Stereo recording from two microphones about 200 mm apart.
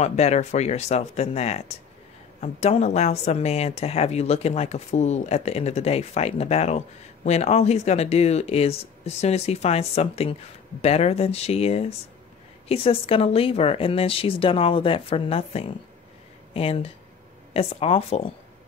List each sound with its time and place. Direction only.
0.0 s a woman's voice: 35° left (ahead or behind)